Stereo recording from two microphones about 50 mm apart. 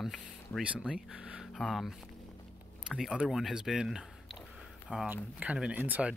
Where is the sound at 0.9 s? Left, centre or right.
Centre.